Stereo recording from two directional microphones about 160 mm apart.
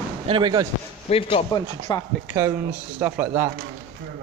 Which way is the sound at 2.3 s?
15° right (ahead or behind).